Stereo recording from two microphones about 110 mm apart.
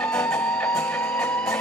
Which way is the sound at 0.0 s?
10° left (ahead or behind).